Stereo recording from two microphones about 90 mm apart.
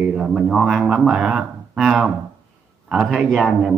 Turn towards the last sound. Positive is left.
turn(degrees=0)  # may be behind; listen again after turning